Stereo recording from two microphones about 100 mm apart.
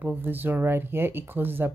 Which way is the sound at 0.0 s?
20° right (ahead or behind).